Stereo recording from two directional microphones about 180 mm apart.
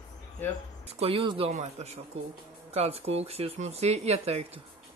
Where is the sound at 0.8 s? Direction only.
35° right (ahead or behind).